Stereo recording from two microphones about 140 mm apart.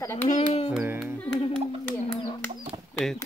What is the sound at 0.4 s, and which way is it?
Music, 45° left (ahead or behind).